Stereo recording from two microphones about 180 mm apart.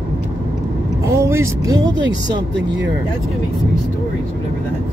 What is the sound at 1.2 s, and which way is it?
Speech, 15° right (ahead or behind).